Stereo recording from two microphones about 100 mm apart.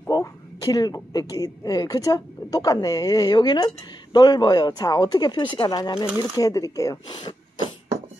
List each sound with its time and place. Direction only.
0.1 s speech: 40° left (ahead or behind)
7.1 s speech: 45° left (ahead or behind)